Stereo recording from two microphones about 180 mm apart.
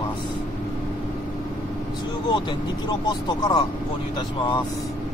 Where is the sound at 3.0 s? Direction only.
25° left (ahead or behind).